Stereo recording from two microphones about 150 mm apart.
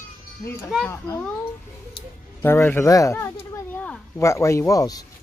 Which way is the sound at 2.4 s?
15° left (ahead or behind).